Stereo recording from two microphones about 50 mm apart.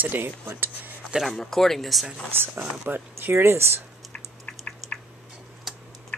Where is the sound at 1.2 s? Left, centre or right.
Centre.